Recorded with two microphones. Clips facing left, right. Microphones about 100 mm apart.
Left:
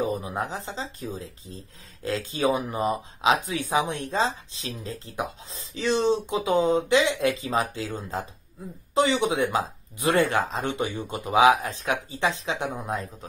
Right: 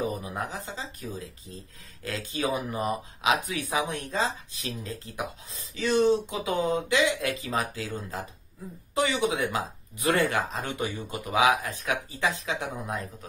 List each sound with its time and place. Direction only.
0.0 s speech: 25° left (ahead or behind)